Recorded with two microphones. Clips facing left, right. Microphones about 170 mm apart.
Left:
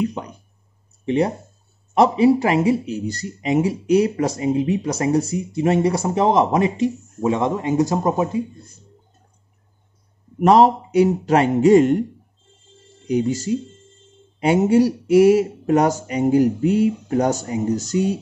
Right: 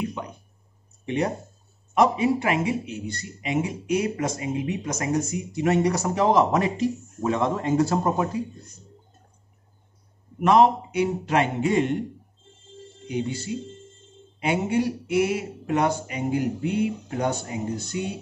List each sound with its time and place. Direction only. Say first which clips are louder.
1.0 s speech: left 6 dB; 30° left (ahead or behind)
10.4 s speech: left 4 dB; 40° left (ahead or behind)
13.1 s speech: left 8 dB; 40° left (ahead or behind)